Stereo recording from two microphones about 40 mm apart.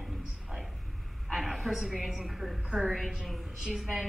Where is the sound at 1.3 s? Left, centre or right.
Centre.